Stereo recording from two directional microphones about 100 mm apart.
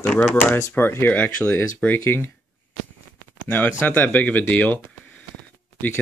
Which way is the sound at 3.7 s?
20° left (ahead or behind).